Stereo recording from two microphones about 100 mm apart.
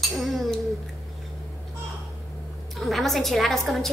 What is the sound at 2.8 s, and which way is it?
A woman's voice, centre (ahead or behind).